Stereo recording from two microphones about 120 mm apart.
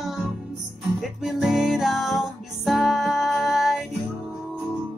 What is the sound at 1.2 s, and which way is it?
Music, 5° right (ahead or behind).